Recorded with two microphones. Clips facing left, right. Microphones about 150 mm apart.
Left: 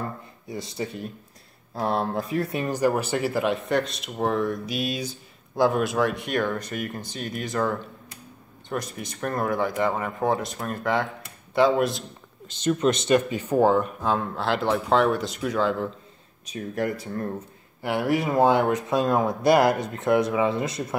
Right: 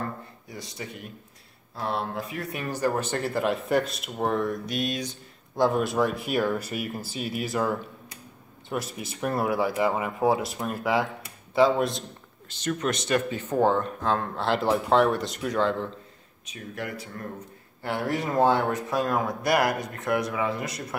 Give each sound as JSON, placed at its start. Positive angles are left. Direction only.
{"t": 0.5, "sound": "speech", "side_deg": 25}
{"t": 1.8, "sound": "speech", "side_deg": 40}
{"t": 2.6, "sound": "speech", "side_deg": 15}
{"t": 12.4, "sound": "speech", "side_deg": 20}
{"t": 16.4, "sound": "speech", "side_deg": 40}
{"t": 17.8, "sound": "speech", "side_deg": 10}